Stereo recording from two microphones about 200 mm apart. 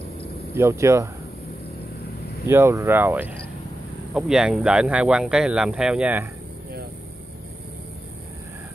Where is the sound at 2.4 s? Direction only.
15° right (ahead or behind).